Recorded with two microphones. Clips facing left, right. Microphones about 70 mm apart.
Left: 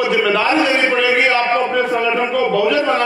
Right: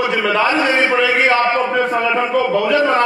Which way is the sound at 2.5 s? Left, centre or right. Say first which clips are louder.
Left 1 dB; right.